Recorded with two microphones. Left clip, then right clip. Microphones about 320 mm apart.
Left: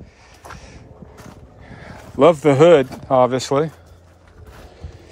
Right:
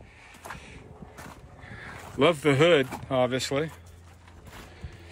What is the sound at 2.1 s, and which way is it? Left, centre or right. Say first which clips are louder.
Speech: left 10 dB; left.